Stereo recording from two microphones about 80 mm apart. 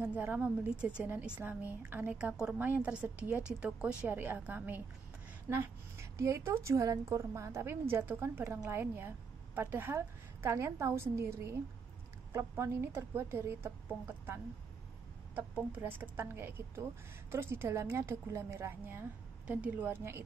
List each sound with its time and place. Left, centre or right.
0.0 s a woman's voice: right
2.1 s a woman's voice: centre
5.5 s a woman's voice: right